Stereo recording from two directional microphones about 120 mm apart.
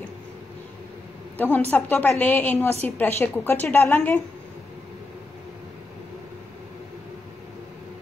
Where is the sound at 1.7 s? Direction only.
15° left (ahead or behind).